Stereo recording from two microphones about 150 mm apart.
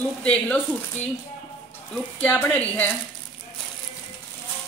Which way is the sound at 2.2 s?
10° left (ahead or behind).